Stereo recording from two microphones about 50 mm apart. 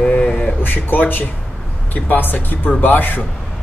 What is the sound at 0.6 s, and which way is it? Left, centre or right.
Speech, left.